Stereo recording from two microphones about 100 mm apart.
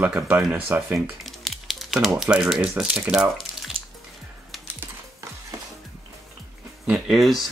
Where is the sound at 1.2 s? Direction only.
Centre (ahead or behind).